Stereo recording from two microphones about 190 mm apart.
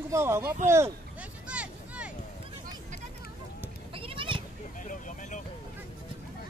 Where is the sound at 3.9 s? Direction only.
30° right (ahead or behind).